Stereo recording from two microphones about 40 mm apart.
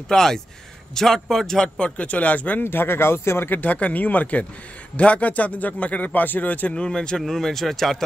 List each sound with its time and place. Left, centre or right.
0.1 s speech: centre
2.0 s a man's voice: left
2.6 s speech: left
3.5 s a man's voice: left
6.7 s speech: left; by 8.0 s centre